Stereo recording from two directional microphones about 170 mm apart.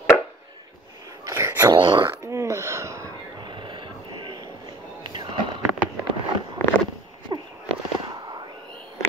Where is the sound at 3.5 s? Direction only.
30° right (ahead or behind).